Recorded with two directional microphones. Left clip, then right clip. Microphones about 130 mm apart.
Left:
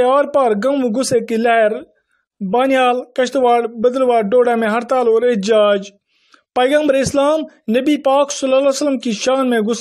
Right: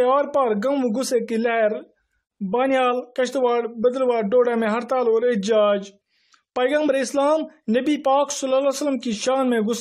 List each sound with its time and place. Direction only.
0.0 s speech: 30° left (ahead or behind)